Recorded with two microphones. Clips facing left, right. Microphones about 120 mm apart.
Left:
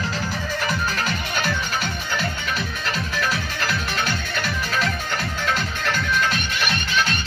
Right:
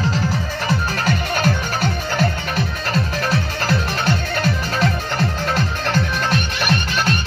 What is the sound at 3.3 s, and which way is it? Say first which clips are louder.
Music: right 5 dB; 35° right (ahead or behind).